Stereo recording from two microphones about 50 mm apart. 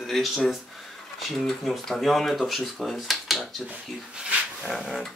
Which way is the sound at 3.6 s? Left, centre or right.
Right.